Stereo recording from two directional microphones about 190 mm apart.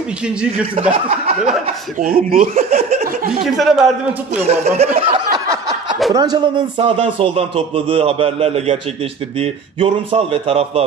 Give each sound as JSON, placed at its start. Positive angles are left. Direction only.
{"t": 1.0, "sound": "speech", "side_deg": -35}
{"t": 3.5, "sound": "a man's voice", "side_deg": 0}
{"t": 4.4, "sound": "speech", "side_deg": -35}
{"t": 5.3, "sound": "a sound", "side_deg": -20}
{"t": 6.1, "sound": "speech", "side_deg": -20}